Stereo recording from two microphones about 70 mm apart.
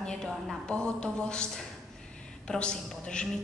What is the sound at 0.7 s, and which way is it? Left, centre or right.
A woman's voice, centre.